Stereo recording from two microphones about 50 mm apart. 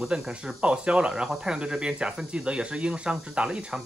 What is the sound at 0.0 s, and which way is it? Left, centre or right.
Speech, centre.